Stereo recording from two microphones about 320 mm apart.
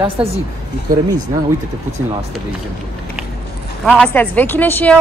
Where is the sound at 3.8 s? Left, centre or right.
Centre.